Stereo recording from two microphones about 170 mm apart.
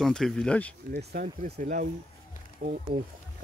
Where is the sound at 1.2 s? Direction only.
45° right (ahead or behind).